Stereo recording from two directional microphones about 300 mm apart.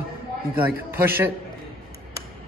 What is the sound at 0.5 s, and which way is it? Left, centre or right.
Speech, centre.